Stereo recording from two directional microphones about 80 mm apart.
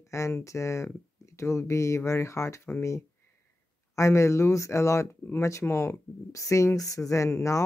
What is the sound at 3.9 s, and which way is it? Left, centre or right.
Speech, left.